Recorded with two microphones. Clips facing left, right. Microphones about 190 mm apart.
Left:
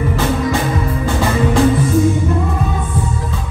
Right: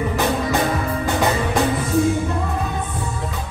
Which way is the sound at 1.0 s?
20° right (ahead or behind).